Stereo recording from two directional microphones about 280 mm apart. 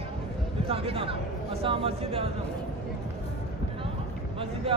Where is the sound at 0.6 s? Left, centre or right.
Centre.